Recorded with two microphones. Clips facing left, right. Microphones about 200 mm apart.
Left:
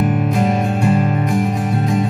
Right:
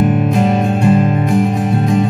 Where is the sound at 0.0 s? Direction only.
30° right (ahead or behind).